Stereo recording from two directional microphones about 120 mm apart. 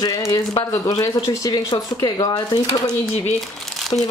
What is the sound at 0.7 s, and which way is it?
Speech, 30° left (ahead or behind).